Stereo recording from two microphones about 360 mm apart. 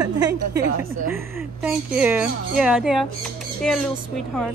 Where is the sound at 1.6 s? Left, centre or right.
Centre.